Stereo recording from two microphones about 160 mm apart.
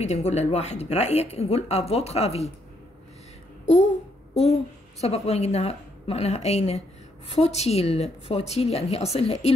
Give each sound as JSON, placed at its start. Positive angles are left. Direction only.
{"t": 0.0, "sound": "speech", "side_deg": 45}
{"t": 3.6, "sound": "babbling", "side_deg": 45}
{"t": 5.0, "sound": "speech", "side_deg": 40}